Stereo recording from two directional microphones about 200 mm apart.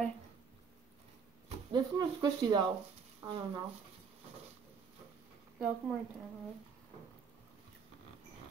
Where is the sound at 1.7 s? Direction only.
20° right (ahead or behind).